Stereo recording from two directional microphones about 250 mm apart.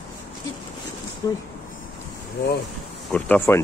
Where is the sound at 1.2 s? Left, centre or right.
Centre.